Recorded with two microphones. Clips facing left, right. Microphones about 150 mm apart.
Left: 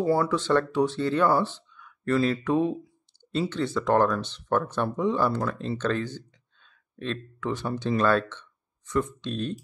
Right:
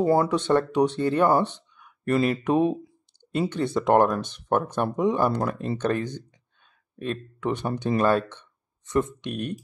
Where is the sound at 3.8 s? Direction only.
20° right (ahead or behind).